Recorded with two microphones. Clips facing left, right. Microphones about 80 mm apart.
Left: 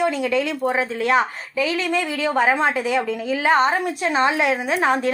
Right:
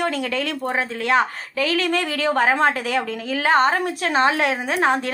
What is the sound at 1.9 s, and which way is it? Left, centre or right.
A woman's voice, right.